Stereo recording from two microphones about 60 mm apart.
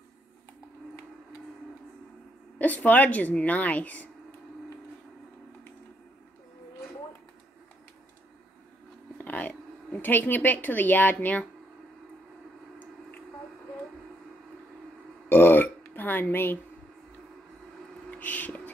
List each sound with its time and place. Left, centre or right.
2.6 s a woman's voice: left
9.2 s speech: left
15.2 s burping: left
18.1 s a sound: left